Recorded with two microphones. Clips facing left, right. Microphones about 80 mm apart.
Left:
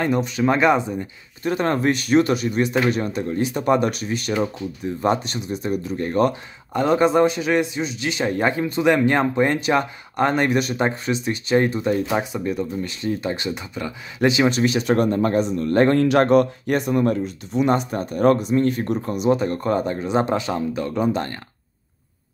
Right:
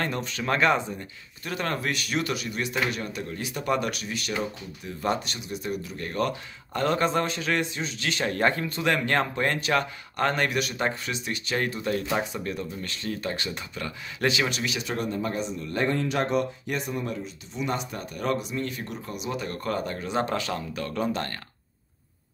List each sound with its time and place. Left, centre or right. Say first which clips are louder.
0.0 s speech: left 9 dB; centre
6.7 s a man's voice: left 7 dB; centre
14.6 s speech: left 11 dB; left
19.4 s speech: left 8 dB; left